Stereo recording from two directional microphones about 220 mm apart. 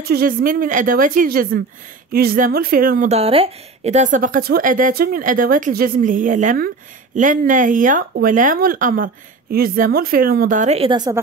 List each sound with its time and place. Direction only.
0.1 s speech: 40° right (ahead or behind); by 11.1 s 20° right (ahead or behind)